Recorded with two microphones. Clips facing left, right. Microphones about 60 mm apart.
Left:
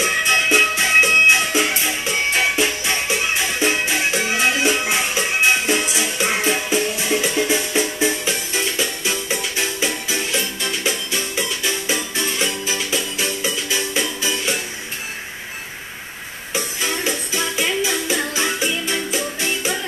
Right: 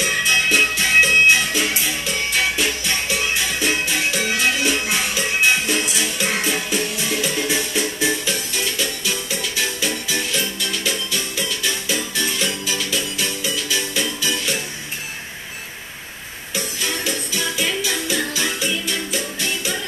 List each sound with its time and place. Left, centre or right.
0.0 s music: left
16.5 s music: left